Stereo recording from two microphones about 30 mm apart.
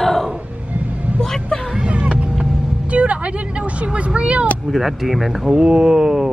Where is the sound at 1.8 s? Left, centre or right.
Right.